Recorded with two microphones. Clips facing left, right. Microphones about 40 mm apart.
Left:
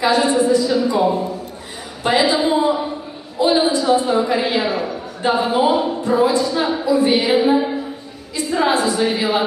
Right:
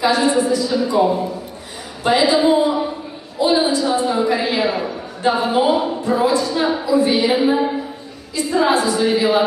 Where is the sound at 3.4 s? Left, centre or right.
Left.